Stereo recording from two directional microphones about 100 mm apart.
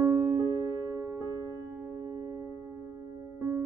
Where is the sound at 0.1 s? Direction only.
30° right (ahead or behind).